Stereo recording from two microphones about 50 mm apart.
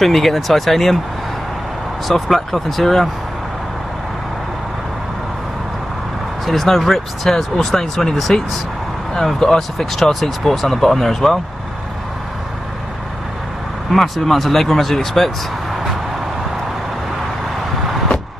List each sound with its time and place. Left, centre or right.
0.0 s speech: centre
2.0 s speech: centre
6.4 s speech: centre
13.9 s speech: centre